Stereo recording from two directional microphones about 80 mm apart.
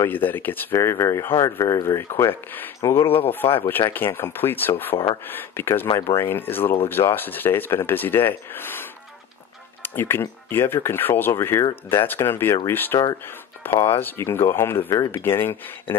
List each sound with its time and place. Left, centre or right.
0.0 s speech: left
9.9 s speech: left